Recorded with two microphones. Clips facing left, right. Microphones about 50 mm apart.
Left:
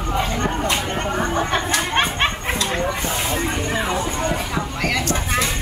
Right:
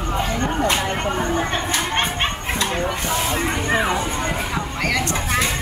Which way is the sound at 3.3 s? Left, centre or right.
Centre.